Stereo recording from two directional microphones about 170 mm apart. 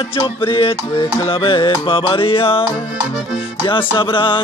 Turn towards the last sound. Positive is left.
turn(degrees=30)  # may be behind; listen again after turning